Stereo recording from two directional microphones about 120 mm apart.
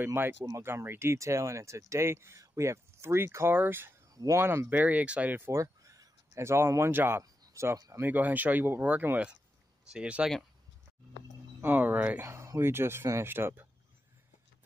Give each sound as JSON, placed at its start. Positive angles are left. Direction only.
{"t": 0.0, "sound": "speech", "side_deg": -15}
{"t": 4.1, "sound": "speech", "side_deg": -30}
{"t": 8.1, "sound": "speech", "side_deg": -15}
{"t": 11.6, "sound": "speech", "side_deg": -15}
{"t": 12.2, "sound": "speech", "side_deg": -25}